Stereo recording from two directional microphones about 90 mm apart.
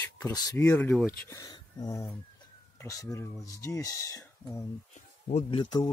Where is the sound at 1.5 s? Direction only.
40° left (ahead or behind).